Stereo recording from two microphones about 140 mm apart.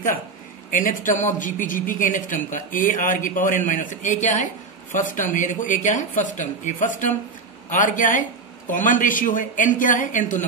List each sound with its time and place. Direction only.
0.7 s a woman's voice: 70° left (ahead or behind)